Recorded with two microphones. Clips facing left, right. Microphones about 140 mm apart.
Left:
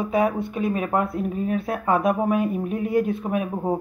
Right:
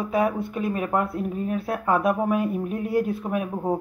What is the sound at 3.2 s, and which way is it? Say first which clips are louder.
Speech: left 2 dB; 10° left (ahead or behind).